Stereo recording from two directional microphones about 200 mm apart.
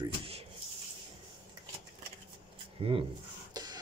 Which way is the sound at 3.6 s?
20° right (ahead or behind).